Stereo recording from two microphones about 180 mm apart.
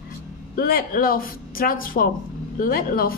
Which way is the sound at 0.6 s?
55° left (ahead or behind).